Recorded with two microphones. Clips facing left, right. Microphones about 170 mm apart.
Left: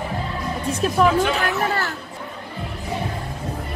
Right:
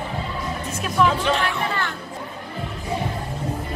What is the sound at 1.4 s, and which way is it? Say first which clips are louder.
Speech: left 2 dB; 40° left (ahead or behind).